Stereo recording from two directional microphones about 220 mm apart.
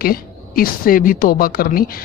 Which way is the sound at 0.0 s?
40° left (ahead or behind).